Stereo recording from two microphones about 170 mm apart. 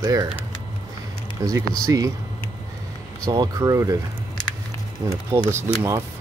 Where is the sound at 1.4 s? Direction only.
20° right (ahead or behind).